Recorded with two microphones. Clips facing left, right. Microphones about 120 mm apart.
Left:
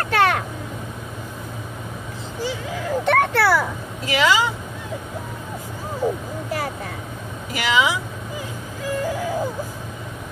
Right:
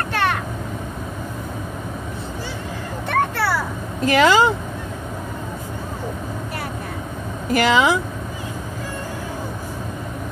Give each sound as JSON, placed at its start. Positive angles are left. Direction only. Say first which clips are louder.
{"t": 0.1, "sound": "vehicle", "louder": "left 4 dB", "side_deg": 90}
{"t": 3.1, "sound": "a sound", "louder": "left 3 dB", "side_deg": 80}
{"t": 4.0, "sound": "speech", "louder": "right 5 dB", "side_deg": -50}
{"t": 7.5, "sound": "speech", "louder": "right 4 dB", "side_deg": -45}